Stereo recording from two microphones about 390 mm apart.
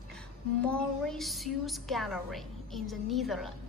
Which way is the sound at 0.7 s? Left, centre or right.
Centre.